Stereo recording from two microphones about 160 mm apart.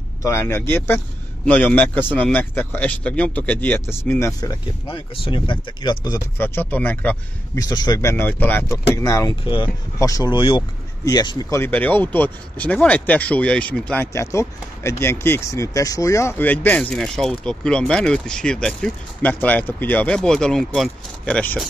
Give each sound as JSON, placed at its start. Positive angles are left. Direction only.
{"t": 0.2, "sound": "a man's voice", "side_deg": 15}
{"t": 4.8, "sound": "speech", "side_deg": 35}
{"t": 6.4, "sound": "speech", "side_deg": 15}
{"t": 7.5, "sound": "speech", "side_deg": 25}
{"t": 9.4, "sound": "speech", "side_deg": 30}
{"t": 9.9, "sound": "speech", "side_deg": 20}
{"t": 14.1, "sound": "speech", "side_deg": 20}